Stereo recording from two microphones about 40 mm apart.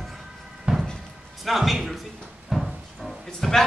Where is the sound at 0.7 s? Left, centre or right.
Right.